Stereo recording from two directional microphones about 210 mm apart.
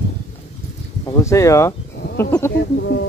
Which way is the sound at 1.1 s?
15° left (ahead or behind).